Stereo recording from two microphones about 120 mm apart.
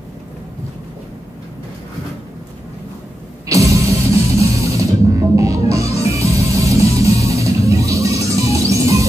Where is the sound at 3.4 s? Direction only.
25° right (ahead or behind).